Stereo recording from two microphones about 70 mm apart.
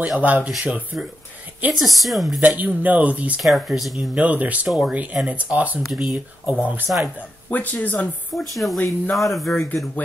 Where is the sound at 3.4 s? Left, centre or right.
Centre.